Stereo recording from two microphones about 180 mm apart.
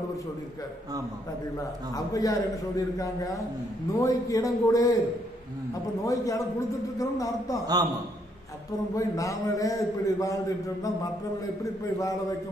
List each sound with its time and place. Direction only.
2.0 s a man's voice: 20° left (ahead or behind)
6.0 s speech: 20° left (ahead or behind)
7.6 s a man's voice: 20° right (ahead or behind)
8.9 s a man's voice: 20° left (ahead or behind)
12.0 s speech: 20° left (ahead or behind)